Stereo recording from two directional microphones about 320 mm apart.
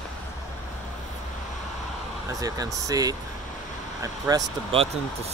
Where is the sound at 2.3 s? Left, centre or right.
Centre.